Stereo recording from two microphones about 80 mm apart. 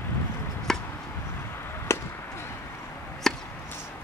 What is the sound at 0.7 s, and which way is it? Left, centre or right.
Chop, centre.